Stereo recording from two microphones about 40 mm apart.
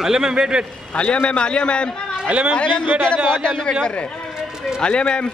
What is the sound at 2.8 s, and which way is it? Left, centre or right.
Speech, right.